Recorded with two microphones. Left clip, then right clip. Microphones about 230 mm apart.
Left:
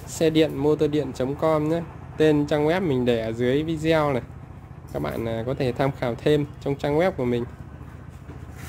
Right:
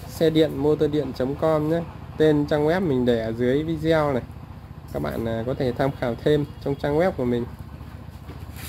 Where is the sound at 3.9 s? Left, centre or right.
Centre.